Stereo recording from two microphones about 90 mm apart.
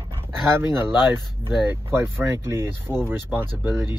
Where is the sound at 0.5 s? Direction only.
25° right (ahead or behind).